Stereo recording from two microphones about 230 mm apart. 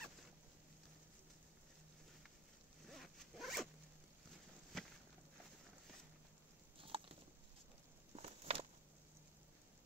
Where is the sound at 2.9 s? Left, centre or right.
Centre.